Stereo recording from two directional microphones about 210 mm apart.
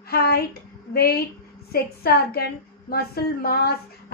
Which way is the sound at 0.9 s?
45° left (ahead or behind).